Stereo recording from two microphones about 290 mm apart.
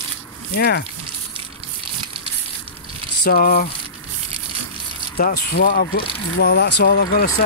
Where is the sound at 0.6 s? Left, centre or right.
Left.